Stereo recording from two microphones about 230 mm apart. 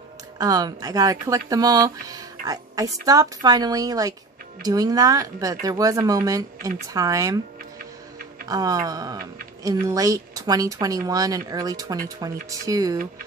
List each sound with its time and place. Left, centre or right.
0.4 s speech: centre
8.5 s speech: centre